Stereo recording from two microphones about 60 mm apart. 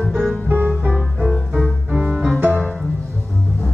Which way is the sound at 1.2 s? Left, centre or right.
Centre.